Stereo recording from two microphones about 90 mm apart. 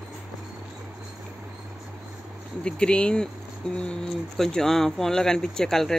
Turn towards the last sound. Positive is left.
turn(degrees=5)  # may be behind; listen again after turning